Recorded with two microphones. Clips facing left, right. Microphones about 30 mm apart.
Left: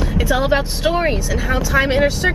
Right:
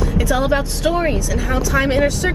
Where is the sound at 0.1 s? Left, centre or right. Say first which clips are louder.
Left 2 dB; centre.